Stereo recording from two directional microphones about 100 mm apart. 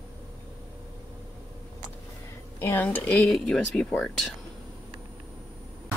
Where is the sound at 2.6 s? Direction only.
20° left (ahead or behind).